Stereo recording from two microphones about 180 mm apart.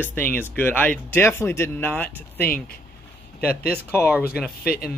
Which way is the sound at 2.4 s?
55° left (ahead or behind).